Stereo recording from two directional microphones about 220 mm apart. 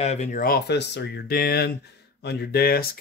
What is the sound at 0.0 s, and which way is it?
Speech, 30° left (ahead or behind).